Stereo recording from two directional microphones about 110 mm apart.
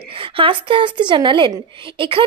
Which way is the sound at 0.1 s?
55° right (ahead or behind).